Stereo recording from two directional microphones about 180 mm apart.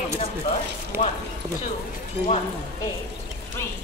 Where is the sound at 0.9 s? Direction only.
15° right (ahead or behind).